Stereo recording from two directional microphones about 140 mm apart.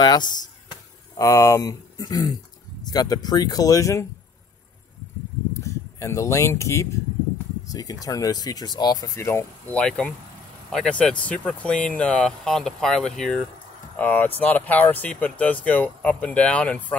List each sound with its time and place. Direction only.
0.0 s speech: 30° left (ahead or behind)
5.5 s speech: 20° left (ahead or behind)